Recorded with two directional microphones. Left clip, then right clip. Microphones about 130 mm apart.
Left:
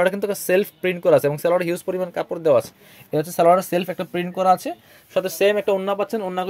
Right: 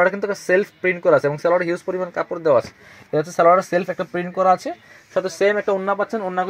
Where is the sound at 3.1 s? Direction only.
25° left (ahead or behind).